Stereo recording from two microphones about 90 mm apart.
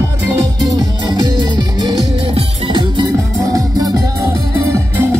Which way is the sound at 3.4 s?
45° right (ahead or behind).